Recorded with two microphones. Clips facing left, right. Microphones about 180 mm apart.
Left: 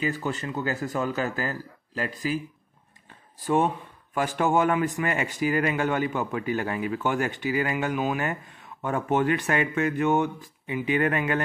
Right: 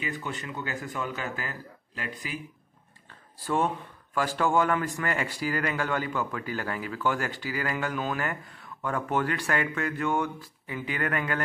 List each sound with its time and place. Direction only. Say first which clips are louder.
0.0 s speech: left 6 dB; 40° left (ahead or behind)
3.3 s speech: left 4 dB; 15° left (ahead or behind)